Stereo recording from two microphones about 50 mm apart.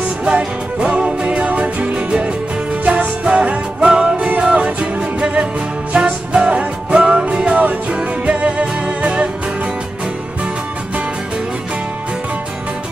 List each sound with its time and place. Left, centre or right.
0.2 s music: centre